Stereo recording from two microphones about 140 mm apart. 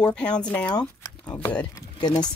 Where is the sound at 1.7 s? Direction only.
30° left (ahead or behind).